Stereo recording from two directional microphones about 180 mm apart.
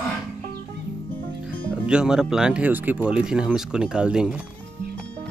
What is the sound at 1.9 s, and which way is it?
Speech, 5° right (ahead or behind).